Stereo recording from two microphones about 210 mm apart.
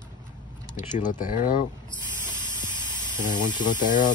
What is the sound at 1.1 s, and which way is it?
Speech, 40° left (ahead or behind).